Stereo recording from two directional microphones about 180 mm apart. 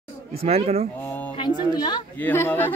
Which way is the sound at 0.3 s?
35° right (ahead or behind).